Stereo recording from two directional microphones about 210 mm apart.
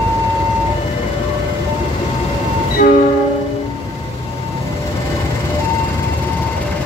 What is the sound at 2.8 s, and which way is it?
Train, 45° left (ahead or behind).